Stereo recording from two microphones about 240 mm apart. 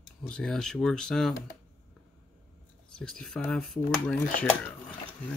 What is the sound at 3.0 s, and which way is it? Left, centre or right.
Speech, centre.